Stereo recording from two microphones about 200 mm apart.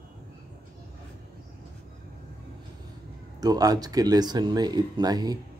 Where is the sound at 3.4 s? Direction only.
20° right (ahead or behind).